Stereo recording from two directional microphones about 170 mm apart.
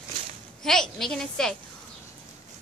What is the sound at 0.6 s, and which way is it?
Speech, 5° left (ahead or behind).